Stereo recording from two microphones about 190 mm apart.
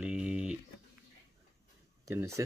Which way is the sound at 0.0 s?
5° right (ahead or behind).